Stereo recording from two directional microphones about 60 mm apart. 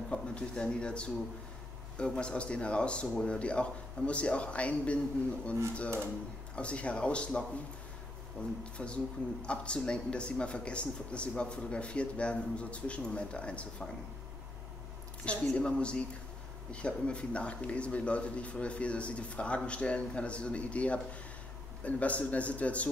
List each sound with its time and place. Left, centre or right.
0.1 s speech: centre
15.2 s speech: centre